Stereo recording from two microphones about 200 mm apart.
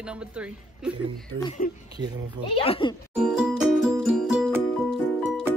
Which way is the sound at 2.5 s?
25° left (ahead or behind).